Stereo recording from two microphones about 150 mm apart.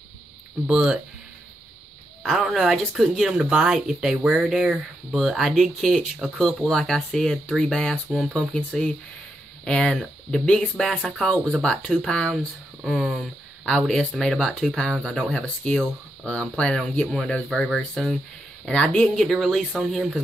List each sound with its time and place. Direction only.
0.7 s speech: 5° right (ahead or behind)
2.2 s speech: 5° right (ahead or behind)